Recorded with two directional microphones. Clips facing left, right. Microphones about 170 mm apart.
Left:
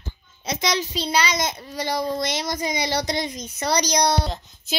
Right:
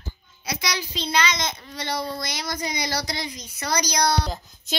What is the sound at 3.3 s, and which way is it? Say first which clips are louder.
Speech: left 6 dB; 40° left (ahead or behind).